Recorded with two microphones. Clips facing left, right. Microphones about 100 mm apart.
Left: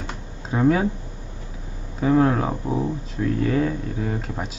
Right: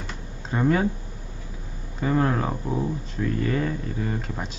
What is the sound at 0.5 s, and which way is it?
Speech, 5° left (ahead or behind).